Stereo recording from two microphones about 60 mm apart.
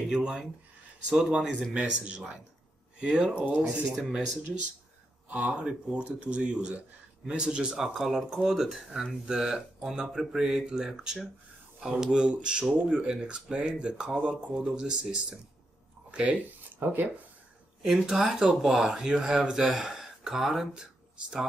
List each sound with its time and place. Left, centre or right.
0.1 s speech: centre
5.3 s speech: right
17.8 s speech: centre